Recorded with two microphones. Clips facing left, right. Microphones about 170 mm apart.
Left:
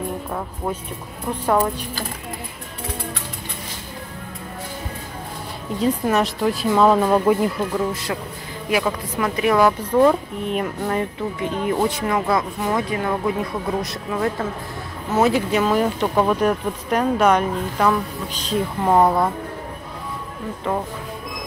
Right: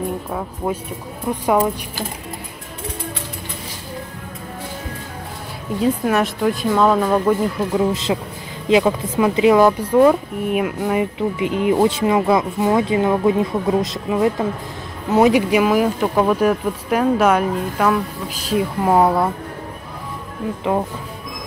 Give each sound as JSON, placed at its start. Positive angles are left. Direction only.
{"t": 0.3, "sound": "speech", "side_deg": -5}
{"t": 5.8, "sound": "speech", "side_deg": 0}
{"t": 7.7, "sound": "speech", "side_deg": -20}